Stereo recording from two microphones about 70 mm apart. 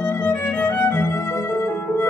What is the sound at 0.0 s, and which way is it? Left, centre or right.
Violin, left.